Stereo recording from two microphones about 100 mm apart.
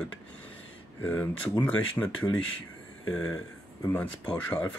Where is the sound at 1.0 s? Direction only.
15° left (ahead or behind).